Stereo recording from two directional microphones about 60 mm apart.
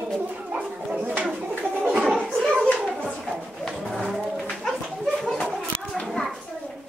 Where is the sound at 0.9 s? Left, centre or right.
Centre.